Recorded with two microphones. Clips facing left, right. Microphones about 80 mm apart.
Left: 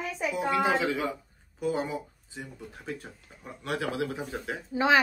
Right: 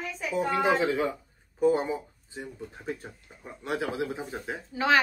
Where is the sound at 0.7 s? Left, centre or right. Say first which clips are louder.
Right 2 dB; right.